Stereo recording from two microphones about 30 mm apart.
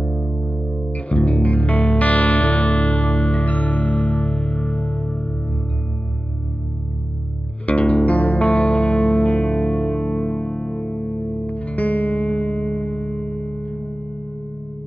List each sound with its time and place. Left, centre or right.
0.0 s music: left
1.0 s music: left
7.6 s music: left
11.4 s music: left